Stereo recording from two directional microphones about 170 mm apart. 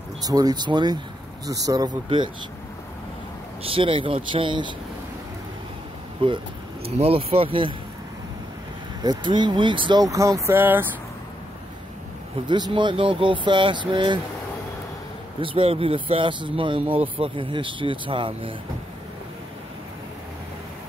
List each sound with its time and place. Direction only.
0.2 s speech: 20° right (ahead or behind)
3.6 s speech: 30° right (ahead or behind)
6.2 s speech: 30° right (ahead or behind)
9.0 s speech: 25° right (ahead or behind)
12.4 s speech: 25° right (ahead or behind)
15.4 s speech: 30° right (ahead or behind)